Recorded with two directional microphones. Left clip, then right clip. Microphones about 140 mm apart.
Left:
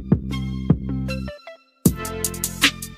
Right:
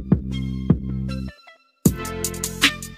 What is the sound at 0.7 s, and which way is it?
Music, centre (ahead or behind).